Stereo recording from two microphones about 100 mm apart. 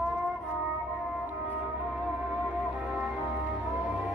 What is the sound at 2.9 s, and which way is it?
Music, 15° right (ahead or behind).